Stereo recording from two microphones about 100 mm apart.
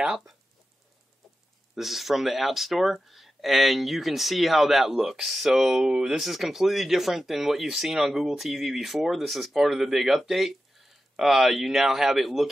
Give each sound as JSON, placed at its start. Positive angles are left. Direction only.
{"t": 1.8, "sound": "speech", "side_deg": 0}